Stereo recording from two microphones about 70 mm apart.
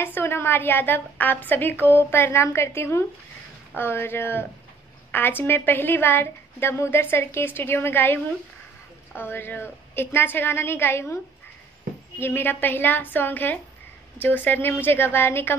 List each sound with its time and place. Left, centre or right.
0.0 s a woman's voice: left
12.2 s a woman's voice: left